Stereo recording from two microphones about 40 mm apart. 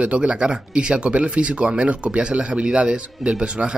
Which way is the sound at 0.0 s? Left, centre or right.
Right.